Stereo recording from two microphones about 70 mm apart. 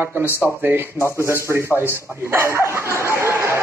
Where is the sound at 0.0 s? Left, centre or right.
Right.